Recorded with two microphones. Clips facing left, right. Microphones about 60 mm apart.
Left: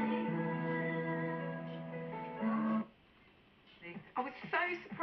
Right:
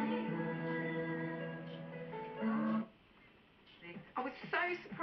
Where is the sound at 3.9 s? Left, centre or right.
Centre.